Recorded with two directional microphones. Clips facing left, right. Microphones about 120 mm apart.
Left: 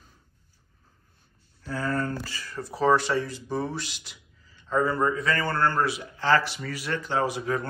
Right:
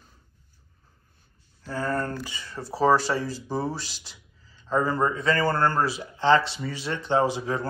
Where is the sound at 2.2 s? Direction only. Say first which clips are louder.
Even; 20° right (ahead or behind).